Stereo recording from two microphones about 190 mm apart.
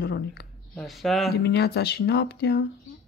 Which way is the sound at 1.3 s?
60° left (ahead or behind).